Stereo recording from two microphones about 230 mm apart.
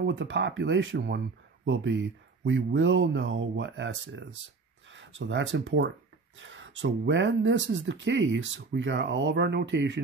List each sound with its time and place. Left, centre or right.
0.0 s speech: right